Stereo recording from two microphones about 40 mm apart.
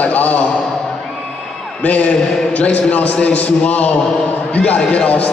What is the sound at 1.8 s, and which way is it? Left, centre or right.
A man's voice, left.